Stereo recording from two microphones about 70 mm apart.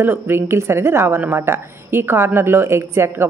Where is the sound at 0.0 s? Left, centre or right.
Right.